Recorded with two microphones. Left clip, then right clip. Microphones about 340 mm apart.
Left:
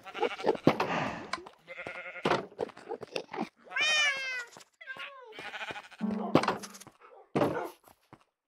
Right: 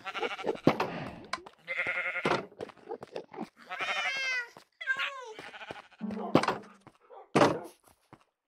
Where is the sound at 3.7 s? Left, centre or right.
Right.